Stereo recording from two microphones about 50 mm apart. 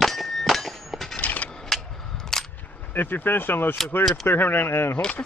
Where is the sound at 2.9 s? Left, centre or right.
Left.